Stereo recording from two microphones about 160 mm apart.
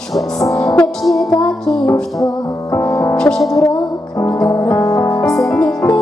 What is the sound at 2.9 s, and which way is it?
Music, 20° left (ahead or behind).